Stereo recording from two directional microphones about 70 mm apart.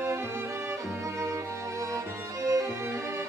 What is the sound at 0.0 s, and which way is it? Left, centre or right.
Music, right.